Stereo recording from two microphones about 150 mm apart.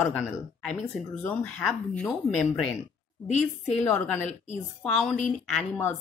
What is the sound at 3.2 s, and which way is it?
Speech, 50° left (ahead or behind).